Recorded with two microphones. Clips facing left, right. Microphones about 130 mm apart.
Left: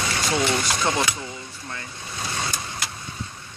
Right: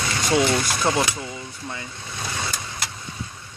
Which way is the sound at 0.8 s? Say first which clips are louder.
Right 3 dB; 5° right (ahead or behind).